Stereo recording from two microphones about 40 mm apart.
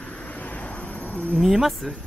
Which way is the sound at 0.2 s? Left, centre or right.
Left.